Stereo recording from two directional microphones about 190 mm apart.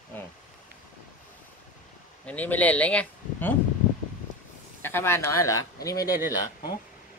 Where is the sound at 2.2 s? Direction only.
10° left (ahead or behind).